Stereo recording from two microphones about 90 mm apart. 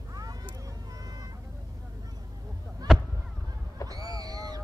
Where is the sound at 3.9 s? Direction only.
45° right (ahead or behind).